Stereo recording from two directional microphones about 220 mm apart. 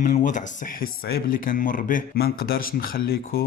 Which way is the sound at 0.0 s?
35° left (ahead or behind).